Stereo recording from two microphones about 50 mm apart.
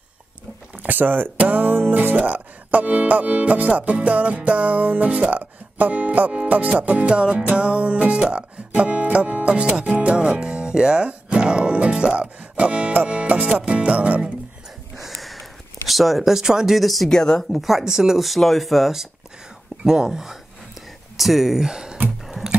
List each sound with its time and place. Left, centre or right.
0.8 s speech: right
2.0 s music: right
6.4 s speech: right
6.8 s music: right
15.0 s sniff: centre
15.9 s speech: centre
17.1 s speech: centre
17.5 s speech: centre